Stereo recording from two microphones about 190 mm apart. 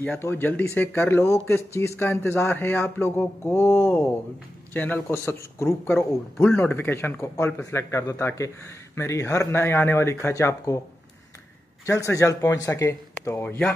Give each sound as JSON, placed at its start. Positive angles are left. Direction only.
{"t": 0.0, "sound": "speech", "side_deg": 10}
{"t": 11.8, "sound": "speech", "side_deg": 15}